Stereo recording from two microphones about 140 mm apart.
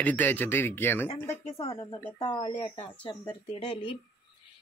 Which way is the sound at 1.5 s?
40° left (ahead or behind).